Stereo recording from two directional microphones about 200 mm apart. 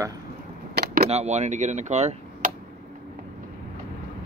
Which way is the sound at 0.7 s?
50° right (ahead or behind).